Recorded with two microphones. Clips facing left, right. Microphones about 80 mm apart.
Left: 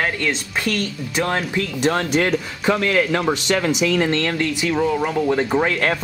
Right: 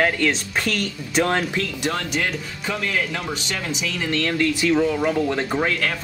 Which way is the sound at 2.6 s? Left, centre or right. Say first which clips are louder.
Left 6 dB; left.